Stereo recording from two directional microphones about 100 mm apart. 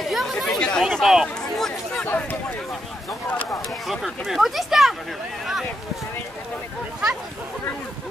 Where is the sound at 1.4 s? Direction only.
5° left (ahead or behind).